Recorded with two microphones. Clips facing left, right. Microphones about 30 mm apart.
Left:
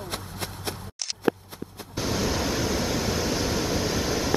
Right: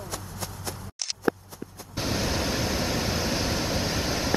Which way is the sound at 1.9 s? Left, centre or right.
Centre.